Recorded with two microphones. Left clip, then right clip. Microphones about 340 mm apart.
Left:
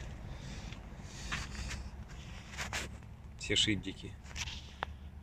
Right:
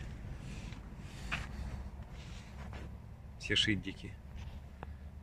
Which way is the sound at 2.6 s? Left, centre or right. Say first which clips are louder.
Left 15 dB; left.